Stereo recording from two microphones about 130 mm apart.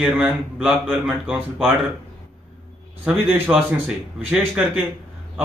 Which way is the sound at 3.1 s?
15° right (ahead or behind).